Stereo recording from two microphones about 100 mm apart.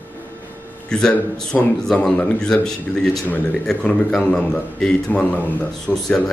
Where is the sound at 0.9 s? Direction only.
5° left (ahead or behind).